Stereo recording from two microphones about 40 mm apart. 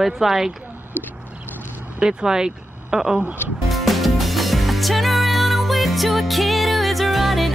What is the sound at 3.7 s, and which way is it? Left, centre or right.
Music, centre.